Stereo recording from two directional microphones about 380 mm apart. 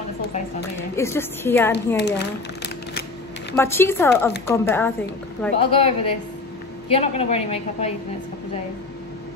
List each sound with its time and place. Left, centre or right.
0.9 s speech: centre
2.0 s a sound: left
3.5 s speech: centre